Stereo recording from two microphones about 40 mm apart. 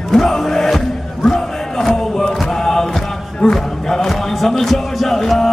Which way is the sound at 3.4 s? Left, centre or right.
Centre.